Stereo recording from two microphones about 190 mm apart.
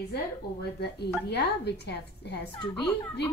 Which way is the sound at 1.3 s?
60° left (ahead or behind).